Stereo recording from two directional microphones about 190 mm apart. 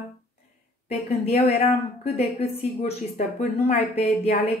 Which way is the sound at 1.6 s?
30° left (ahead or behind).